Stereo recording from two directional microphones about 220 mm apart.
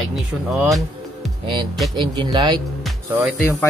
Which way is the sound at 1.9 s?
20° right (ahead or behind).